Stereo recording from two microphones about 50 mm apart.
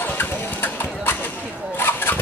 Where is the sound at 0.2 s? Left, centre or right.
Left.